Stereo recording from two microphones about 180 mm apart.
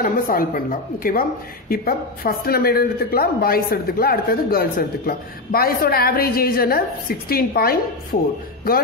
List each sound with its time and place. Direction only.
0.0 s a woman's voice: 50° left (ahead or behind)